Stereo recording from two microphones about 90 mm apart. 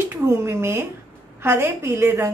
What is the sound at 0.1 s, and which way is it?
A woman's voice, 30° right (ahead or behind).